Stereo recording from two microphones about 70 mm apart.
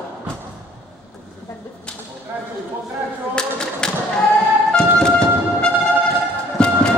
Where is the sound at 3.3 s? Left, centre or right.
Centre.